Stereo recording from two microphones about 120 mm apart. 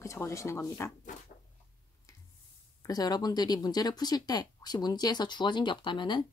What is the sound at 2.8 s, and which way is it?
Speech, 30° left (ahead or behind).